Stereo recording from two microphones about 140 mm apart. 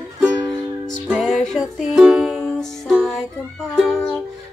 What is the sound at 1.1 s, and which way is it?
Music, centre (ahead or behind).